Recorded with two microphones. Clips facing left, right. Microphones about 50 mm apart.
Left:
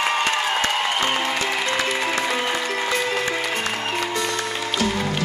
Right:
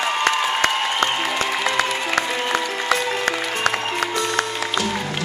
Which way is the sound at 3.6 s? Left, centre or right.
Right.